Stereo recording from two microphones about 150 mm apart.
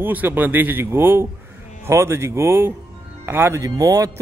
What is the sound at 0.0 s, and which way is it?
A man's voice, 10° right (ahead or behind).